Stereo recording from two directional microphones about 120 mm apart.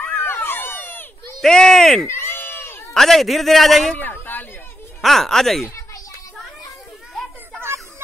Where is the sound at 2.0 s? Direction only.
20° left (ahead or behind).